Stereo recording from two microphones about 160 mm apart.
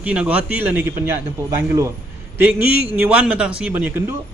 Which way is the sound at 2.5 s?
10° right (ahead or behind).